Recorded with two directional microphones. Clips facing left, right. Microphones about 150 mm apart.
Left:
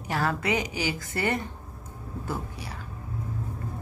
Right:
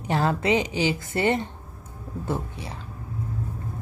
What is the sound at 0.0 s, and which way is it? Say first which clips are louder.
A woman's voice: right 4 dB; 25° right (ahead or behind).